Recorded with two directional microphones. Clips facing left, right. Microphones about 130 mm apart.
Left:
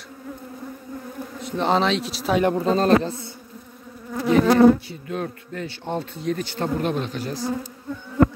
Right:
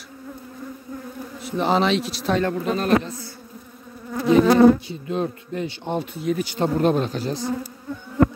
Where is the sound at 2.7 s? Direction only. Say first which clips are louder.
Left 2 dB; 30° left (ahead or behind).